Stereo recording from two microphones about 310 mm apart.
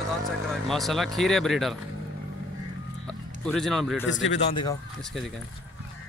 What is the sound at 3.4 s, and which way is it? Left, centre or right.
Speech, centre.